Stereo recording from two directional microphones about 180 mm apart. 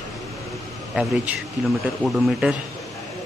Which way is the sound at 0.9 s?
5° right (ahead or behind).